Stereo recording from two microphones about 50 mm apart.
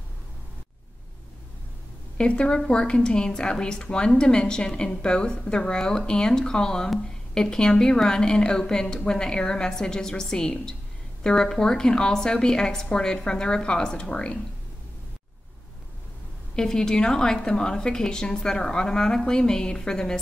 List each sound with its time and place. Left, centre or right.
2.1 s a woman's voice: left
16.5 s a woman's voice: centre